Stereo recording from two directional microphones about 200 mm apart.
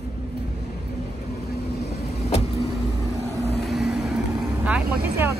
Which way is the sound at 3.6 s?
Centre (ahead or behind).